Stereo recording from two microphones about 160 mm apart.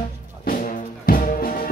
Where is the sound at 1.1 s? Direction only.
65° left (ahead or behind).